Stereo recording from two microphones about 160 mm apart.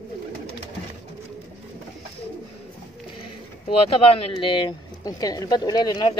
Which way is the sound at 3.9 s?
35° left (ahead or behind).